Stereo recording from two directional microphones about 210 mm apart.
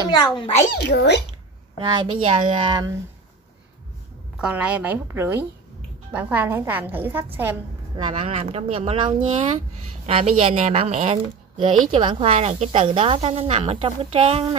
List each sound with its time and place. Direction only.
0.1 s a child's voice: 20° left (ahead or behind)
0.7 s speech: 50° left (ahead or behind)
1.8 s speech: 20° right (ahead or behind)
4.4 s a woman's voice: 5° right (ahead or behind)
8.0 s a woman's voice: 25° right (ahead or behind)